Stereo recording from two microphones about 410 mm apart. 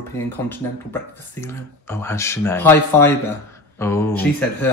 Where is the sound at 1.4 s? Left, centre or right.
Centre.